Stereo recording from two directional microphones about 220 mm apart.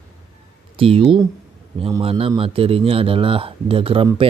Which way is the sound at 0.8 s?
25° right (ahead or behind).